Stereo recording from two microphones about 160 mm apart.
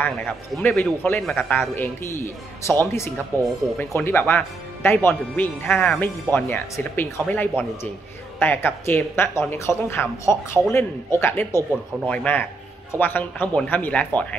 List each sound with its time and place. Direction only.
0.0 s speech: 10° left (ahead or behind)